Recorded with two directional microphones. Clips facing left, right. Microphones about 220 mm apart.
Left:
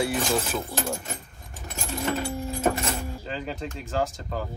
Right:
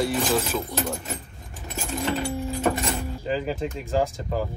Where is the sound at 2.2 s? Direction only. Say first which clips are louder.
Right 1 dB; 10° left (ahead or behind).